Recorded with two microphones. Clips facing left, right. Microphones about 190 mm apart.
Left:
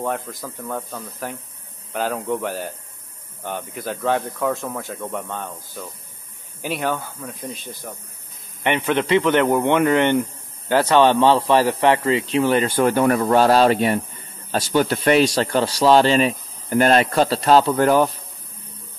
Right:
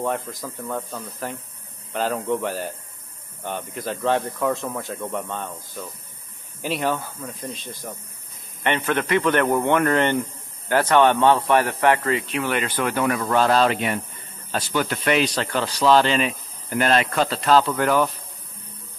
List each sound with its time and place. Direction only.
0.0 s speech: centre (ahead or behind)
8.6 s speech: 15° left (ahead or behind); by 18.1 s 35° left (ahead or behind)